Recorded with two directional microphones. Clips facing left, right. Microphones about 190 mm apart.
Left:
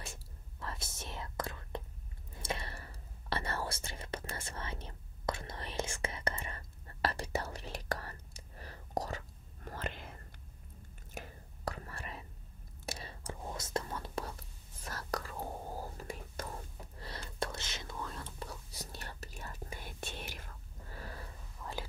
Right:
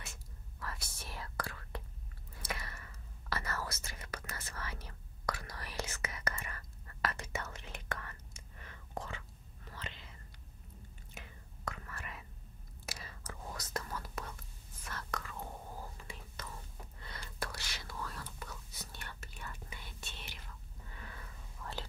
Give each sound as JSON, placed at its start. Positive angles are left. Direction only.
{"t": 0.0, "sound": "whispering", "side_deg": 30}
{"t": 11.1, "sound": "whispering", "side_deg": 40}
{"t": 17.0, "sound": "whispering", "side_deg": 30}
{"t": 21.6, "sound": "whispering", "side_deg": 5}